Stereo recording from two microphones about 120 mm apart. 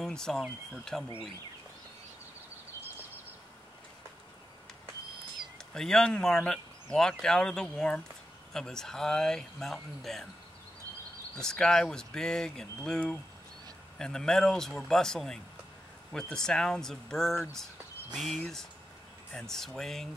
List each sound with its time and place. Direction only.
0.0 s speech: 5° left (ahead or behind)
5.8 s speech: 5° left (ahead or behind)
11.4 s speech: 5° left (ahead or behind)